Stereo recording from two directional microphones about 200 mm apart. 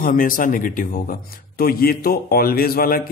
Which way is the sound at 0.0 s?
45° left (ahead or behind).